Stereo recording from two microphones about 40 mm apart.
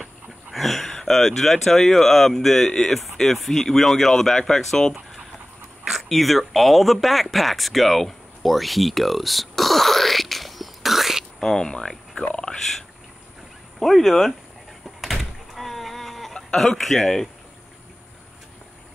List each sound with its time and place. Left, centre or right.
0.6 s speech: centre
6.0 s speech: centre
11.3 s speech: centre
12.2 s speech: left
13.7 s speech: centre
15.0 s door: centre
16.5 s speech: centre